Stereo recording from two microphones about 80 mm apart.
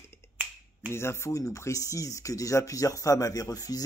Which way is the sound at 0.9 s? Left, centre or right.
Left.